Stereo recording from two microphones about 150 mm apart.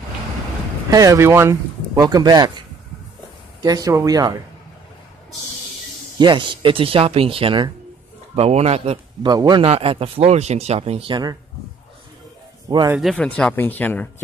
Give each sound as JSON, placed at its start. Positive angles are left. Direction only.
{"t": 0.8, "sound": "speech", "side_deg": -25}
{"t": 3.6, "sound": "speech", "side_deg": -25}
{"t": 6.1, "sound": "a man's voice", "side_deg": -30}
{"t": 9.2, "sound": "speech", "side_deg": -30}
{"t": 9.7, "sound": "speech", "side_deg": -40}
{"t": 12.6, "sound": "speech", "side_deg": -20}
{"t": 13.4, "sound": "speech", "side_deg": 10}